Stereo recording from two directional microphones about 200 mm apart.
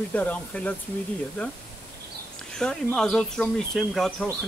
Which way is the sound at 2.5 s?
5° left (ahead or behind).